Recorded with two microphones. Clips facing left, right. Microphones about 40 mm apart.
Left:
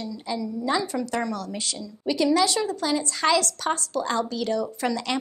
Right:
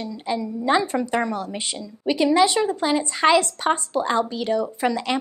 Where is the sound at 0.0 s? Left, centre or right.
Right.